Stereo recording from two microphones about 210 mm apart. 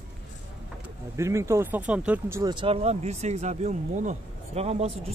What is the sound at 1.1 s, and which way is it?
Speech, 15° right (ahead or behind).